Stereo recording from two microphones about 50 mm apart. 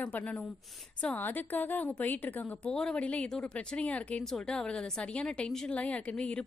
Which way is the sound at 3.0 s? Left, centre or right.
Left.